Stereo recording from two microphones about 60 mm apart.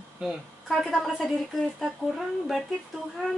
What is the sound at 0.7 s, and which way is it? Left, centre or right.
A woman's voice, centre.